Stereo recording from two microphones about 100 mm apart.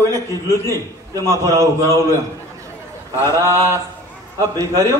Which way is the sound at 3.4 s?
30° right (ahead or behind).